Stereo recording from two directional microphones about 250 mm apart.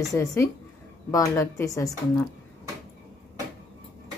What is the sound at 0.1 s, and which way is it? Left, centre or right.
A woman's voice, centre.